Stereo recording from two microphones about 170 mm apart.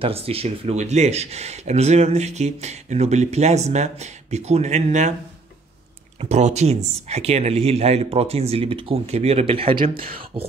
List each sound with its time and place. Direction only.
0.0 s speech: 35° right (ahead or behind)
6.2 s speech: 40° right (ahead or behind)